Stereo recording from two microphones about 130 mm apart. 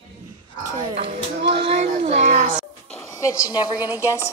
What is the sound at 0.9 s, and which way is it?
A child's voice, 60° right (ahead or behind).